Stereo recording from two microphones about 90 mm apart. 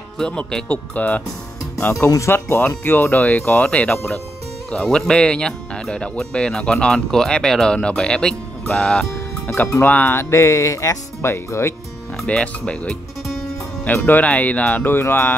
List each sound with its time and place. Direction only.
0.2 s speech: 10° left (ahead or behind)
2.0 s speech: 35° left (ahead or behind); by 3.9 s 15° left (ahead or behind)
3.9 s speech: 5° left (ahead or behind)
9.8 s speech: 25° left (ahead or behind)
12.3 s speech: 10° left (ahead or behind)
13.8 s speech: 20° left (ahead or behind)